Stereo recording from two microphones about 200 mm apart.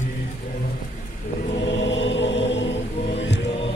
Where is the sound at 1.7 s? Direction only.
65° left (ahead or behind).